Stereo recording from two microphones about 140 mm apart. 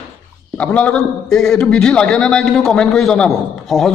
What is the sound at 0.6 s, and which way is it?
A man's voice, 10° left (ahead or behind).